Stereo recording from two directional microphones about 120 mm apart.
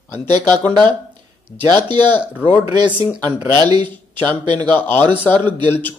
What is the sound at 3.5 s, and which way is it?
Speech, 35° right (ahead or behind).